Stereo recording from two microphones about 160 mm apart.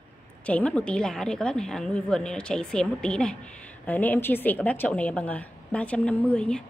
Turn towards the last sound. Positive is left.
turn(degrees=5)  # may be behind; listen again after turning